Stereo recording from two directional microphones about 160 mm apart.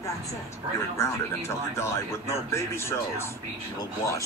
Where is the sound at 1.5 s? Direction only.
15° left (ahead or behind).